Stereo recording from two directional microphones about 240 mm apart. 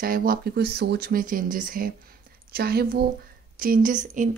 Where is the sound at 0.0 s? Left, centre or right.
Right.